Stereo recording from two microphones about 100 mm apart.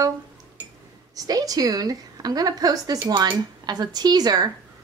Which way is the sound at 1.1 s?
40° right (ahead or behind).